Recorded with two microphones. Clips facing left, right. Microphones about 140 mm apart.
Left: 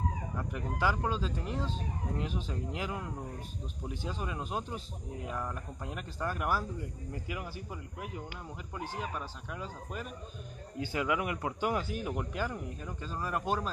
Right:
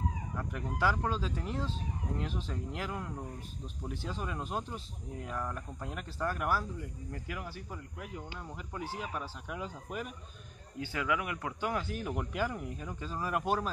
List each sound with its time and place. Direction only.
0.4 s speech: 5° left (ahead or behind)
10.8 s speech: 20° left (ahead or behind)
11.8 s speech: 5° left (ahead or behind)